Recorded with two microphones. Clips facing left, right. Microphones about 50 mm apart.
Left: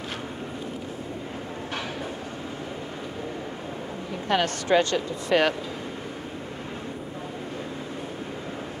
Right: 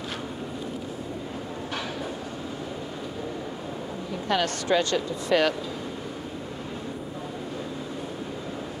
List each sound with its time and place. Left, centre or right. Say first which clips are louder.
4.3 s speech: left 2 dB; left